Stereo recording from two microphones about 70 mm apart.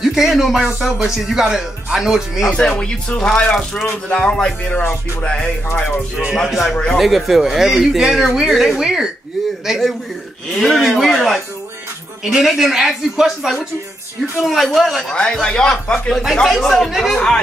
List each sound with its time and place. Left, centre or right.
0.0 s speech: centre
2.5 s speech: centre
6.3 s speech: centre